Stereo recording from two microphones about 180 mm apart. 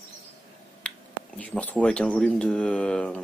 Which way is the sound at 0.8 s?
5° left (ahead or behind).